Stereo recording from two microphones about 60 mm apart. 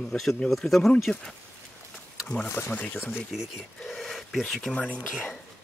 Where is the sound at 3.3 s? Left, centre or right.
Centre.